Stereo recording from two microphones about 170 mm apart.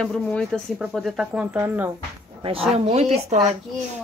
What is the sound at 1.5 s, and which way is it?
Speech, 15° right (ahead or behind).